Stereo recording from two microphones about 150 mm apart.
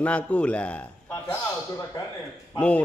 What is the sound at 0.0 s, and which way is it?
A man's voice, 10° left (ahead or behind).